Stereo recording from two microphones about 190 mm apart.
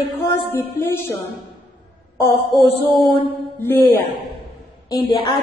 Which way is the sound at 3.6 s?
10° left (ahead or behind).